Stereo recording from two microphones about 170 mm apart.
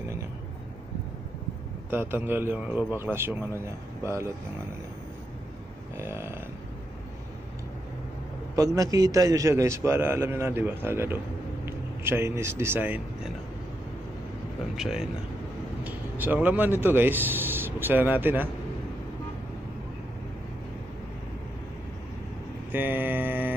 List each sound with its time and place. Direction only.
1.9 s a man's voice: 10° right (ahead or behind)
5.9 s a man's voice: 15° right (ahead or behind)
8.5 s a man's voice: 20° right (ahead or behind)
14.8 s a man's voice: centre (ahead or behind)
22.7 s mantra: 10° right (ahead or behind)